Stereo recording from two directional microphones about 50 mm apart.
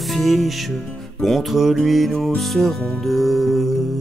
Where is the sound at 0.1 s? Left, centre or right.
Centre.